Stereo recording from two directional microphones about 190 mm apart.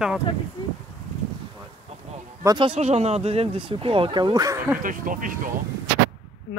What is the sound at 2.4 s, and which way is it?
Speech, 20° right (ahead or behind).